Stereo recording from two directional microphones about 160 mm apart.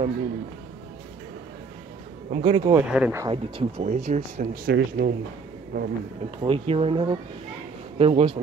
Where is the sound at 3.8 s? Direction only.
45° right (ahead or behind).